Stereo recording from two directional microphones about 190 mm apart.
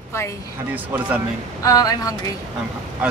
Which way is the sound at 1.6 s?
20° left (ahead or behind).